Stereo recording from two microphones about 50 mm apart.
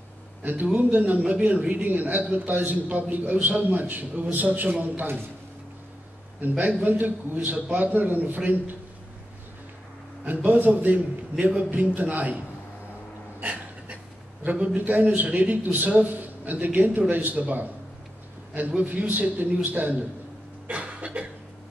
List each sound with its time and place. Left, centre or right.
0.4 s a man's voice: right
6.5 s a man's voice: right
10.2 s a man's voice: right
13.4 s a sound: right
14.4 s a man's voice: right
20.6 s cough: right